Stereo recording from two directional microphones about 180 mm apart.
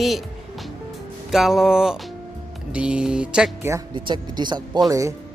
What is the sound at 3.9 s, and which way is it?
Speech, 25° right (ahead or behind).